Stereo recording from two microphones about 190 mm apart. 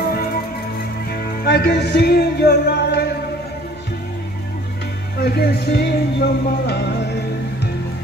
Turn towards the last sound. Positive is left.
turn(degrees=60)  # may be behind; listen again after turning